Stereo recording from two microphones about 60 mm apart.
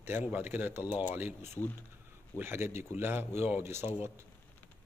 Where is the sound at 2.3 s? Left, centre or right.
Right.